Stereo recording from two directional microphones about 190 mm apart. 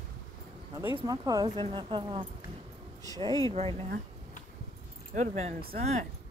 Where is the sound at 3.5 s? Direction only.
30° right (ahead or behind).